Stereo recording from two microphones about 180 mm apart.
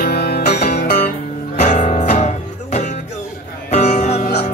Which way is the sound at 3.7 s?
40° left (ahead or behind).